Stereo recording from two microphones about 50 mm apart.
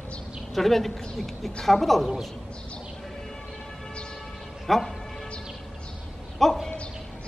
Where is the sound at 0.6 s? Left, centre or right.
Centre.